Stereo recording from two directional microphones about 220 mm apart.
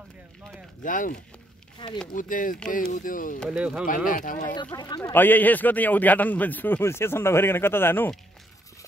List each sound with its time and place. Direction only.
0.8 s speech: 35° left (ahead or behind)
1.8 s speech: 20° left (ahead or behind)
2.1 s speech: 35° left (ahead or behind)
3.3 s speech: 5° right (ahead or behind)
3.8 s speech: 40° left (ahead or behind)
4.7 s speech: 20° left (ahead or behind)